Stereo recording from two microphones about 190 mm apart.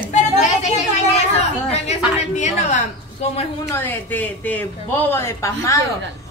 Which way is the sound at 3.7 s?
10° left (ahead or behind).